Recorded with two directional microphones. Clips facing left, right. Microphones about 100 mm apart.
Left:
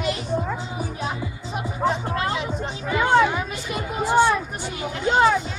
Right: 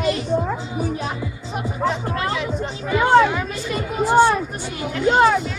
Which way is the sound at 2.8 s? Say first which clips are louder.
Right 4 dB; 10° right (ahead or behind).